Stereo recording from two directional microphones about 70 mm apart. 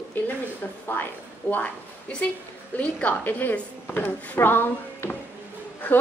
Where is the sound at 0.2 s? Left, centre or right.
Left.